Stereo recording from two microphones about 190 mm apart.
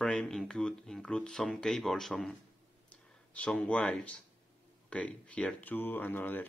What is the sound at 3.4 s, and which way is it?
Speech, 5° left (ahead or behind).